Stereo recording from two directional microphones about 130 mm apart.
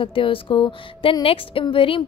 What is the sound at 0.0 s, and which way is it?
Speech, 45° left (ahead or behind).